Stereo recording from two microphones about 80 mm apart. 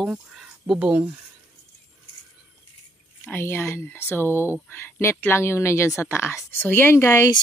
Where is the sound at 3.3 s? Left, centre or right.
Left.